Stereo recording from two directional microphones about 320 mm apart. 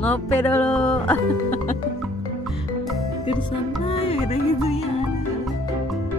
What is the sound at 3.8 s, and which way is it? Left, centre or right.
Music, centre.